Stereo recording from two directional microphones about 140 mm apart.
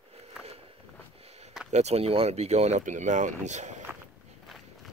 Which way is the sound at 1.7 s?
50° right (ahead or behind).